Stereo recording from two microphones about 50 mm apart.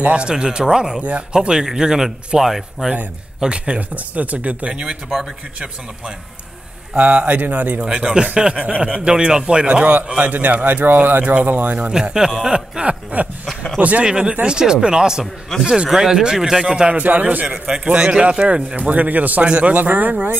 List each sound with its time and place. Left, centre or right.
0.0 s a man's voice: right
1.0 s a man's voice: right; by 2.9 s centre
3.3 s a man's voice: right
4.7 s a man's voice: centre
6.9 s speech: right
7.8 s a man's voice: centre; by 11.9 s right
11.9 s a man's voice: centre
13.1 s a man's voice: right; by 16.8 s centre
16.8 s speech: right
17.5 s a man's voice: centre; by 19.4 s right
19.4 s a man's voice: right
19.7 s speech: right